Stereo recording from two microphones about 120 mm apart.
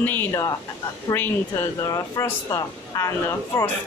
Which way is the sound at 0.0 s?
15° left (ahead or behind).